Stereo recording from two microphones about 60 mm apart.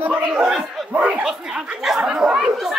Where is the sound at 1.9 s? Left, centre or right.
Centre.